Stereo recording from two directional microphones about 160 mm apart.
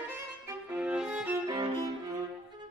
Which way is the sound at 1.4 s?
25° right (ahead or behind).